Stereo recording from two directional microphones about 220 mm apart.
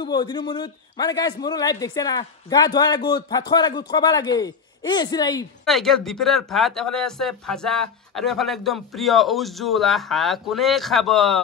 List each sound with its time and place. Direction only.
0.0 s a man's voice: 20° left (ahead or behind)
5.7 s speech: centre (ahead or behind)